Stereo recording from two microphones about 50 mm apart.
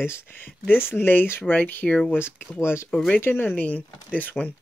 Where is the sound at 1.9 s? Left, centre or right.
Left.